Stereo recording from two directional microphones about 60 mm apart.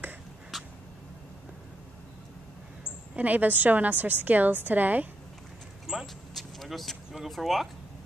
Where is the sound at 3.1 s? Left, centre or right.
Right.